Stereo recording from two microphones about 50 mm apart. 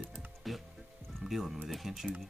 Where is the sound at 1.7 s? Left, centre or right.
Centre.